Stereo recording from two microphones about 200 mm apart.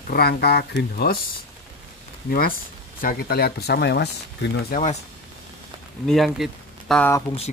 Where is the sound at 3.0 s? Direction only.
45° left (ahead or behind).